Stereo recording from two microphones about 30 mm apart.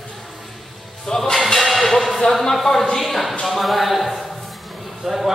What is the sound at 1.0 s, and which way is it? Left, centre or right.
Music, left.